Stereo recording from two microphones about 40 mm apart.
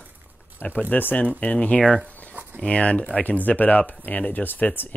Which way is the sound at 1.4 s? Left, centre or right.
Left.